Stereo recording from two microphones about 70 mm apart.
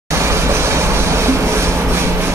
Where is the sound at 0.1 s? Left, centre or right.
Right.